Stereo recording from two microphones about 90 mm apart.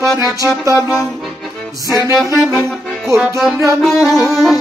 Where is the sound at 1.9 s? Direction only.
35° right (ahead or behind).